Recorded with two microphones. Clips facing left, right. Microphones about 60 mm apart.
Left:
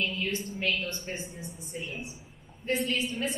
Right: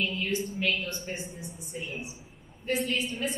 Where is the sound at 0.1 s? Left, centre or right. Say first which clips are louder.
Right 1 dB; centre.